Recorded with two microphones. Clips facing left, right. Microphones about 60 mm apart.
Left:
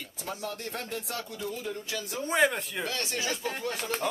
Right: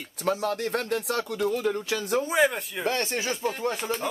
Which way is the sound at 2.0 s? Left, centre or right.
Right.